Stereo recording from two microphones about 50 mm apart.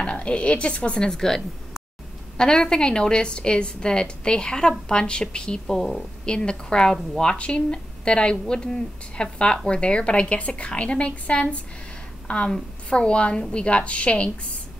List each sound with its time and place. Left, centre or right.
0.0 s a woman's voice: left
5.8 s a woman's voice: centre
6.2 s a woman's voice: centre